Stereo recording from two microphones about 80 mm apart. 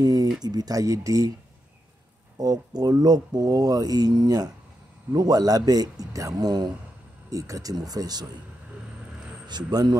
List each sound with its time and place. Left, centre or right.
0.0 s speech: right
2.3 s speech: right
7.2 s speech: right
9.5 s speech: right